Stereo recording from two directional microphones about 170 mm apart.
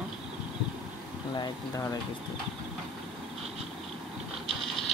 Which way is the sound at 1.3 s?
20° left (ahead or behind).